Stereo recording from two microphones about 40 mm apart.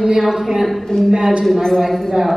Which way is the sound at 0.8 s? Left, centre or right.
Centre.